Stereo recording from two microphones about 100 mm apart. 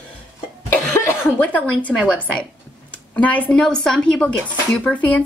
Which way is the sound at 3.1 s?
15° left (ahead or behind).